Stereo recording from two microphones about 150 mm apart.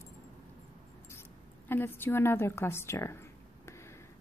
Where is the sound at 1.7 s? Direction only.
15° left (ahead or behind).